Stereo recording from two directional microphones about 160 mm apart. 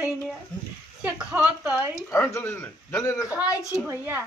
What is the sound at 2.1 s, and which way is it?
A man's voice, 15° left (ahead or behind).